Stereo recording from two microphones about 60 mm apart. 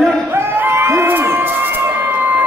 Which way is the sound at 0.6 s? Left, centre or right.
Right.